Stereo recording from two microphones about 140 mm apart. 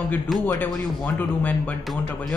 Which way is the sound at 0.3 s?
Centre (ahead or behind).